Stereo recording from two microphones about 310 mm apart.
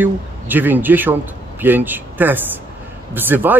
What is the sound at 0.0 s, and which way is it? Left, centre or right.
Speech, centre.